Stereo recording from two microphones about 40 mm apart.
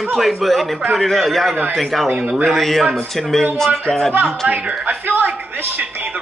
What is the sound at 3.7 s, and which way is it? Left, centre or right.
Music, centre.